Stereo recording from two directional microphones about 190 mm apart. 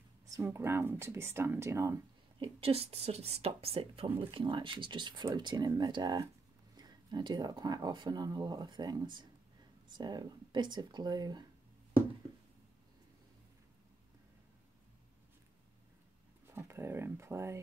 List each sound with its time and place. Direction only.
0.4 s speech: 10° right (ahead or behind)
2.3 s a woman's voice: 30° right (ahead or behind)
16.4 s speech: 15° right (ahead or behind)